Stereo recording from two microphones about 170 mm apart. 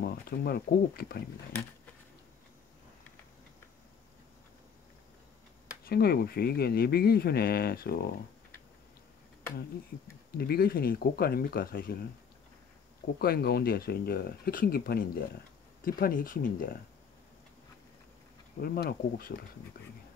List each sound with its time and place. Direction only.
0.0 s speech: 65° left (ahead or behind)
5.9 s speech: 65° left (ahead or behind)
10.3 s speech: 65° left (ahead or behind)
13.2 s speech: 65° left (ahead or behind)
18.6 s speech: 60° left (ahead or behind)